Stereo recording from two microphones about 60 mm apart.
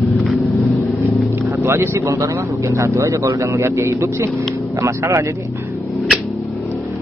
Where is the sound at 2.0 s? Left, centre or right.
Right.